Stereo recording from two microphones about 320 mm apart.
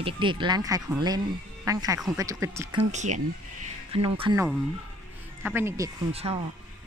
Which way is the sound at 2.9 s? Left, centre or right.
Right.